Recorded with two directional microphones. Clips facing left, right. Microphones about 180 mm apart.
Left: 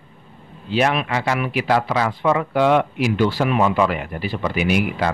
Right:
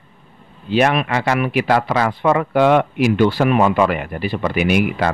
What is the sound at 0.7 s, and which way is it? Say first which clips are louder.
Speech: right 3 dB; 55° right (ahead or behind).